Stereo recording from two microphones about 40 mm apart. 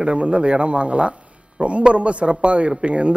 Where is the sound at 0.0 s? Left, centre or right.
Right.